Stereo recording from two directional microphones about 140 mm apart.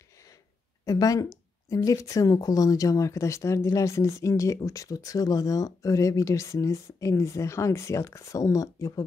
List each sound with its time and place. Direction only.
0.8 s speech: 25° left (ahead or behind)